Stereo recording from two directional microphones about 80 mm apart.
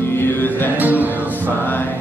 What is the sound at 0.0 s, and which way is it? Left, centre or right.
Music, left.